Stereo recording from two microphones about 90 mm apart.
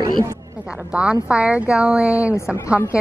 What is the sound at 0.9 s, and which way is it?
A woman's voice, 10° right (ahead or behind).